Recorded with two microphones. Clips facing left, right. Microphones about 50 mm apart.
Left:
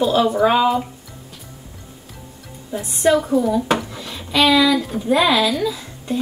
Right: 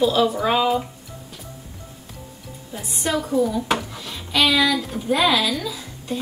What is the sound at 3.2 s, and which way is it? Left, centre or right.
Speech, centre.